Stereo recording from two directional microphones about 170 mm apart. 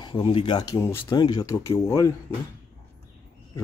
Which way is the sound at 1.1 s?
25° left (ahead or behind).